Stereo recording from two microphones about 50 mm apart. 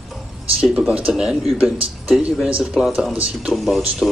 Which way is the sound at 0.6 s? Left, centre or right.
Right.